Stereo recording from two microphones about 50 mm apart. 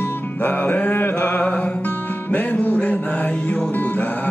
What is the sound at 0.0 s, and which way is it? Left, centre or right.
Music, left.